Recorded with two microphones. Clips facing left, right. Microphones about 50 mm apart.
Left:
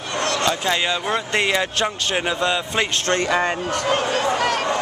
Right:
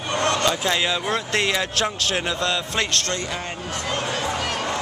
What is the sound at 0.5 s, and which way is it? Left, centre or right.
Speech, centre.